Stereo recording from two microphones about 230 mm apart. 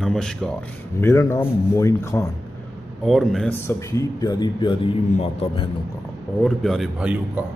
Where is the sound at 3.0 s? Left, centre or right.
Centre; by 5.7 s left.